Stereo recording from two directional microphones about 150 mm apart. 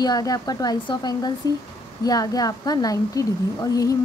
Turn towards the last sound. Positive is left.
turn(degrees=25)  # may be behind; listen again after turning